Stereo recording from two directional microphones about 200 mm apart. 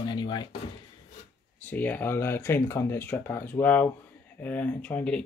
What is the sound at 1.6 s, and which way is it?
Speech, 10° left (ahead or behind).